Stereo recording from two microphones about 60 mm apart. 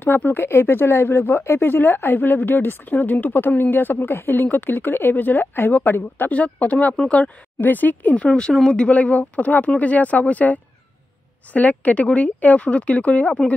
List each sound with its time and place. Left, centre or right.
0.0 s speech: left
8.3 s speech: centre